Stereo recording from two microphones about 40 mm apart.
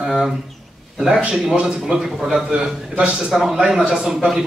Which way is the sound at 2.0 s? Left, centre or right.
Centre.